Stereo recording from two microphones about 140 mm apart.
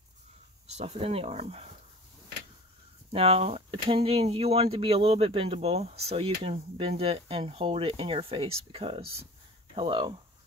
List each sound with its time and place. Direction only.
0.7 s speech: 50° right (ahead or behind)
3.1 s speech: 45° right (ahead or behind)